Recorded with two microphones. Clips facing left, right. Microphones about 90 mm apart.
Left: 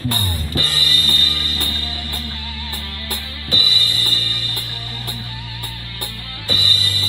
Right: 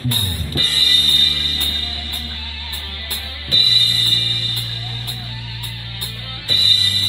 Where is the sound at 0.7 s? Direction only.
45° left (ahead or behind).